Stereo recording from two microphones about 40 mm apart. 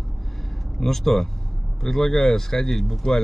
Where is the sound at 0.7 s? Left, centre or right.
Centre.